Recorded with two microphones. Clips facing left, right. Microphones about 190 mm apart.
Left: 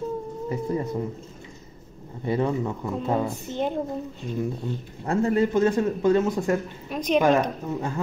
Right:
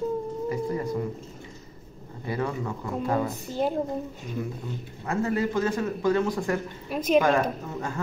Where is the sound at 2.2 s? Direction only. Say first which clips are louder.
Left 5 dB; 20° left (ahead or behind).